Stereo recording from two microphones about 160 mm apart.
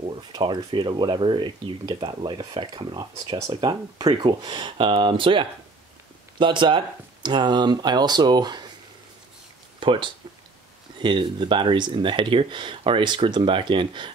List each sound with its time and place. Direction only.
0.0 s speech: 30° right (ahead or behind)
9.8 s speech: 30° right (ahead or behind)